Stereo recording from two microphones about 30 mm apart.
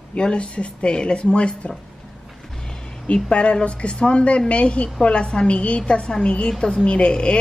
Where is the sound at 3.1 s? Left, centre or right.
Left.